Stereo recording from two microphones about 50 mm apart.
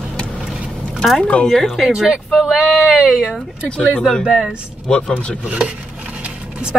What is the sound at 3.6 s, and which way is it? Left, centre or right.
Speech, left.